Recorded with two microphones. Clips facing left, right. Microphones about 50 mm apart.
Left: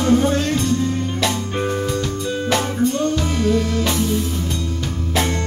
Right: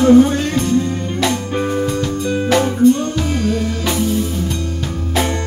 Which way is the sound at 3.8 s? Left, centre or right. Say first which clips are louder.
Right 1 dB; centre.